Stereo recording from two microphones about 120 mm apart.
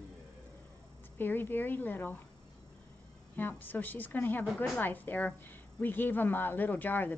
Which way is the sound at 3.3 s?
15° left (ahead or behind).